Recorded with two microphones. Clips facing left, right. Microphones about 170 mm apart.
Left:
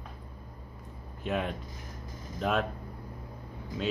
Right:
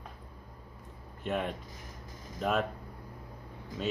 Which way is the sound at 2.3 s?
Centre (ahead or behind).